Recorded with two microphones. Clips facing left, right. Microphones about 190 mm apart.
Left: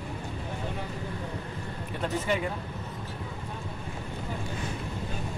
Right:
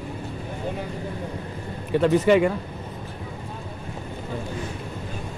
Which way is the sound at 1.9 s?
90° right.